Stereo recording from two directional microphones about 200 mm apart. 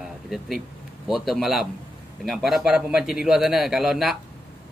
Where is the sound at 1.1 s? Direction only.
Centre (ahead or behind).